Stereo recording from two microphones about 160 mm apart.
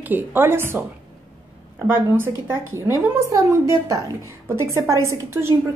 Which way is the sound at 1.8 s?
15° right (ahead or behind).